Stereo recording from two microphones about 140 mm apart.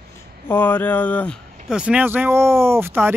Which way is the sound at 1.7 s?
10° right (ahead or behind).